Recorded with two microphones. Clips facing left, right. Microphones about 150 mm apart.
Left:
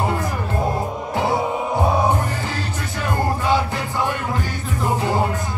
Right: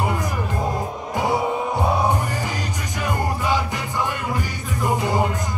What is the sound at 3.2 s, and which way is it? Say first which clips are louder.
Music: left 4 dB; 15° right (ahead or behind).